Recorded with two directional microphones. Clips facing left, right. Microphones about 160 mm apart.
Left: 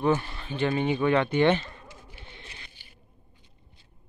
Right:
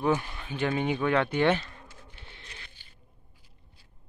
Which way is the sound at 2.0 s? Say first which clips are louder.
Left 3 dB; 5° left (ahead or behind).